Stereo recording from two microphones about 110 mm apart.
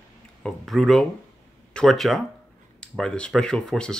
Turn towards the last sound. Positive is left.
turn(degrees=5)  # may be behind; listen again after turning